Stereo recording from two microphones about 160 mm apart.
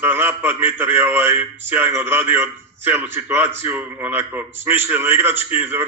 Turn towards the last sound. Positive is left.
turn(degrees=-15)  # may be behind; listen again after turning